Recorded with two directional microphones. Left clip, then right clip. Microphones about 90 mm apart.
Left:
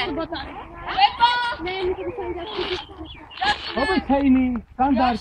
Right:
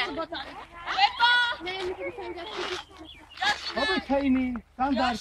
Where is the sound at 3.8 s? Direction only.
15° right (ahead or behind).